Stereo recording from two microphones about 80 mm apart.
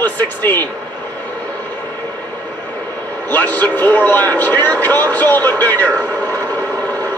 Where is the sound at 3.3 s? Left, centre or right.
Left.